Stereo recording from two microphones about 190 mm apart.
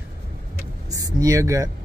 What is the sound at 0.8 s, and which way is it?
Speech, 20° right (ahead or behind).